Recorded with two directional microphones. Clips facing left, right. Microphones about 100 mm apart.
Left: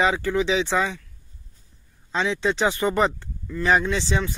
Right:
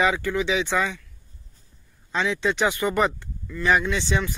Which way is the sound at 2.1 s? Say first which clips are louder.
Left 1 dB; 25° left (ahead or behind).